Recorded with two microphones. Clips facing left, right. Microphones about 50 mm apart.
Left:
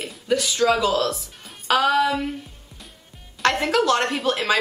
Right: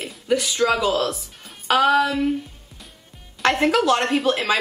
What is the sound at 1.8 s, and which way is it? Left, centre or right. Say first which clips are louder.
Speech: right 3 dB; centre.